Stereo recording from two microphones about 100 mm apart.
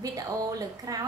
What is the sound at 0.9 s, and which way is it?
Speech, 35° right (ahead or behind).